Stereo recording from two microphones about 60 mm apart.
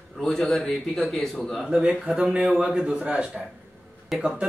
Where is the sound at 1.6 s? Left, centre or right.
Centre.